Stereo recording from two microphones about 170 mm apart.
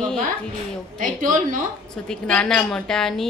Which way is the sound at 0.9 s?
50° right (ahead or behind).